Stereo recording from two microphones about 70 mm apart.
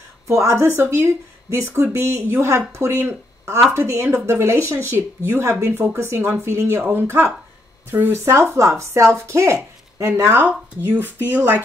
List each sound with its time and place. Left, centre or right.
0.3 s speech: right
8.3 s speech: right